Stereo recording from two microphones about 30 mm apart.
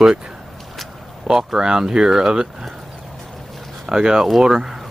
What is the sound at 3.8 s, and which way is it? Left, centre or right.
Speech, right.